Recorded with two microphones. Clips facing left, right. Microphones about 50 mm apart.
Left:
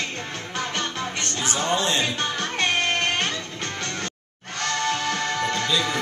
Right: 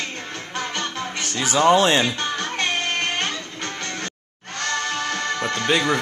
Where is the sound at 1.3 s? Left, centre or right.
Right.